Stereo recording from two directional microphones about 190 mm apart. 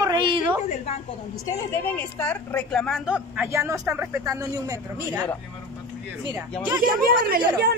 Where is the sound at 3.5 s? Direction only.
15° right (ahead or behind).